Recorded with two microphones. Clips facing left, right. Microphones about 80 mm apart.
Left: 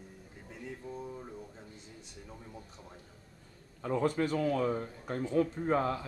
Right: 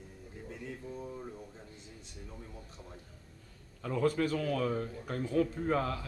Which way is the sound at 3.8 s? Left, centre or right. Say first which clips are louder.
Even; left.